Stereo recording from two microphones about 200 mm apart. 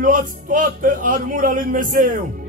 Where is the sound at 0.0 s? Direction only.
40° right (ahead or behind).